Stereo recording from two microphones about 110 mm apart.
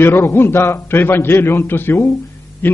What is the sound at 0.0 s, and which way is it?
A man's voice, 25° left (ahead or behind).